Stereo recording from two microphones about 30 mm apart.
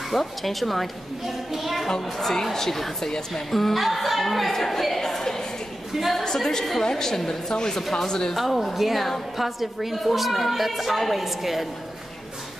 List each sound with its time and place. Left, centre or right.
0.1 s a woman's voice: centre
2.0 s a woman's voice: centre
3.5 s a woman's voice: centre
5.9 s a woman's voice: centre
6.2 s a woman's voice: centre
8.4 s a woman's voice: centre